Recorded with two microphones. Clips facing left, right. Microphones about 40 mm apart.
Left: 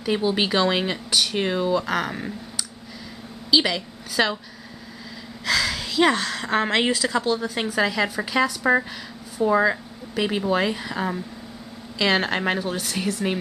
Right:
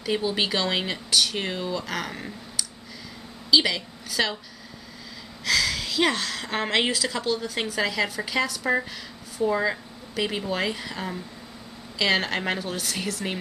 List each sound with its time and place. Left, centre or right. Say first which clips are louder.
0.0 s a woman's voice: left 3 dB; centre
5.4 s a woman's voice: left 1 dB; centre